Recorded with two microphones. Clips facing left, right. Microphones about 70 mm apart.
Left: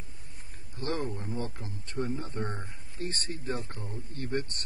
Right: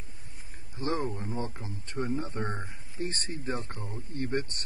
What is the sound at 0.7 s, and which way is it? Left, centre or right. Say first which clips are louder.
Speech: right 2 dB; right.